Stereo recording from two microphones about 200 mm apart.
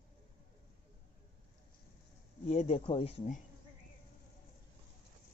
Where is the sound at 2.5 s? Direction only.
35° left (ahead or behind).